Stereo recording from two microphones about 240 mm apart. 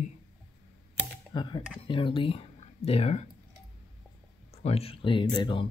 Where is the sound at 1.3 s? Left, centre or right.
Centre.